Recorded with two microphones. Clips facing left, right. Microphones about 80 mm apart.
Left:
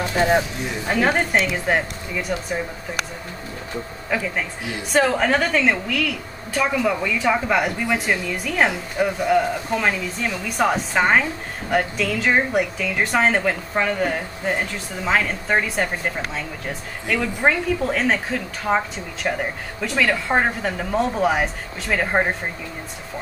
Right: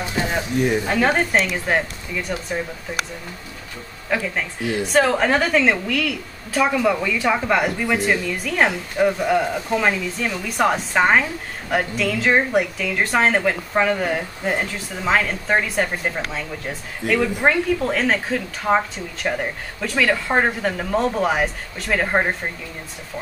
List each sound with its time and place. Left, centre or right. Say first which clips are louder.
0.1 s a sound: left 8 dB; left
0.8 s a woman's voice: right 1 dB; centre
4.1 s a woman's voice: right 1 dB; centre
17.1 s a woman's voice: right 2 dB; centre